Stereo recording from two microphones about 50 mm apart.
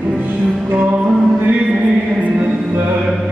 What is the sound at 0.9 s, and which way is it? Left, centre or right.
Music, right.